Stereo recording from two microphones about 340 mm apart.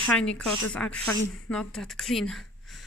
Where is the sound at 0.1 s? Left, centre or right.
Centre.